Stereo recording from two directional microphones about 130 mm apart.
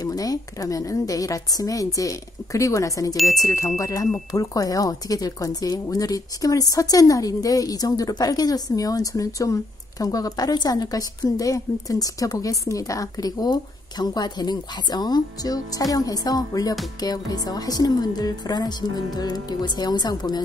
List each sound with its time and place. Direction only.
0.0 s speech: 30° left (ahead or behind)